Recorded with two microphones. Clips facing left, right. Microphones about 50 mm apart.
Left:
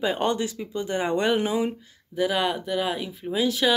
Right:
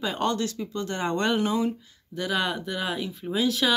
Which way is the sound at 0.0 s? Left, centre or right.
Centre.